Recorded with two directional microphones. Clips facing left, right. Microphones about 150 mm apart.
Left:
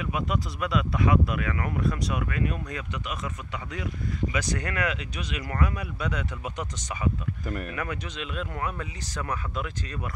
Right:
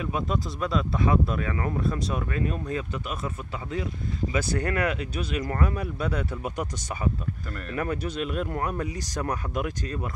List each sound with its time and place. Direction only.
0.0 s speech: 30° right (ahead or behind)
4.3 s speech: 30° right (ahead or behind)
7.7 s speech: 35° right (ahead or behind)